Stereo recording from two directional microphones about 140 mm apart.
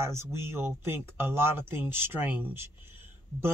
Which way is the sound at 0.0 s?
20° right (ahead or behind).